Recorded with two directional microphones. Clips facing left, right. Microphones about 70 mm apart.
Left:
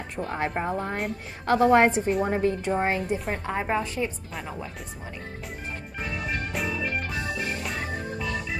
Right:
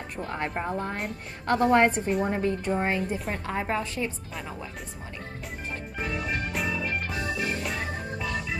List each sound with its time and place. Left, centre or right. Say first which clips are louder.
0.1 s a woman's voice: left 3 dB; centre
3.4 s a woman's voice: left 2 dB; centre